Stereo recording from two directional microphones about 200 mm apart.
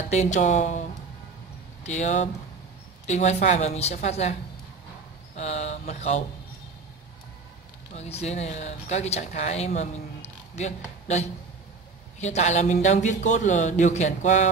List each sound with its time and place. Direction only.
0.1 s speech: 35° left (ahead or behind)
1.9 s speech: 35° left (ahead or behind)
7.9 s speech: 30° left (ahead or behind)